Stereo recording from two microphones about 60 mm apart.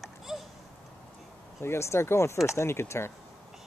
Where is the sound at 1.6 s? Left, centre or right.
Left.